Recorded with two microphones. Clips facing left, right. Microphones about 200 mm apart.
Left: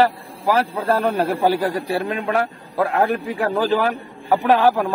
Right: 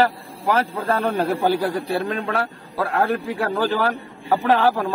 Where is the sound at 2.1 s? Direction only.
15° left (ahead or behind).